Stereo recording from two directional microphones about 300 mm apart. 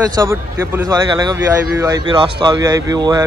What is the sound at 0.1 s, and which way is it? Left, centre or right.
Speech, centre.